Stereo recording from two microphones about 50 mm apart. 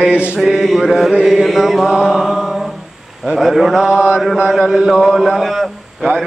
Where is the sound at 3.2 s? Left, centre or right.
Centre.